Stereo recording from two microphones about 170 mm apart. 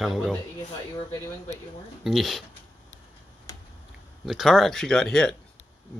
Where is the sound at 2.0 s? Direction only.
Centre (ahead or behind).